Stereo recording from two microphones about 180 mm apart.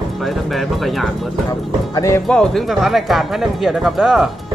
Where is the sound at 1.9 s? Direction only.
15° left (ahead or behind).